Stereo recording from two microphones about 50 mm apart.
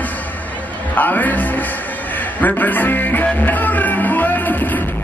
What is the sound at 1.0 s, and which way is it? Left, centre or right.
Music, left.